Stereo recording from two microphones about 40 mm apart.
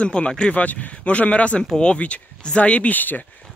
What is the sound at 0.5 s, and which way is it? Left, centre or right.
Speech, left.